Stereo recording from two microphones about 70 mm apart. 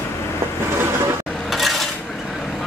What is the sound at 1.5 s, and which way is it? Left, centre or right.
Cutlery, centre.